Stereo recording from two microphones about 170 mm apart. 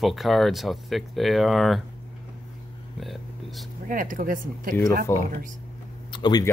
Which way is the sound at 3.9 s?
50° right (ahead or behind).